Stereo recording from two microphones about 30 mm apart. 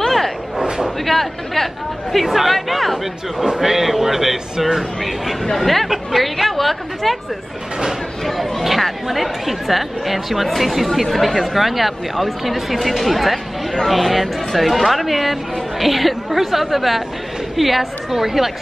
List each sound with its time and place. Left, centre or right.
0.0 s a sound: centre
0.6 s a sound: right
1.0 s speech: centre
2.2 s speech: centre
5.6 s speech: centre
8.2 s speech: centre